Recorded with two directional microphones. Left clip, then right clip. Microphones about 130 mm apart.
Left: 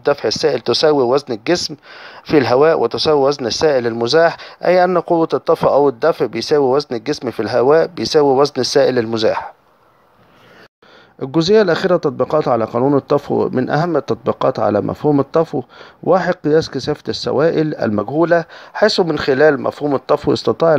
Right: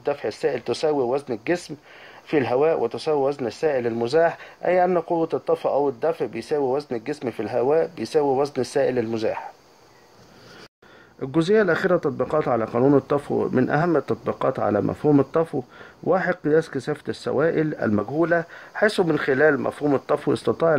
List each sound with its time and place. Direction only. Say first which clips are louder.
0.0 s speech: left 9 dB; 40° left (ahead or behind)
5.0 s speech: left 8 dB; 50° left (ahead or behind)
11.1 s speech: left 7 dB; 30° left (ahead or behind)